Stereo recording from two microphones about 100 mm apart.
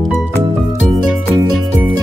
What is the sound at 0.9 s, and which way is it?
Music, 5° left (ahead or behind).